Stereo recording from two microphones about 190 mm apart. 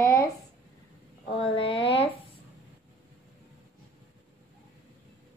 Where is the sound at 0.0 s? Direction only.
15° left (ahead or behind).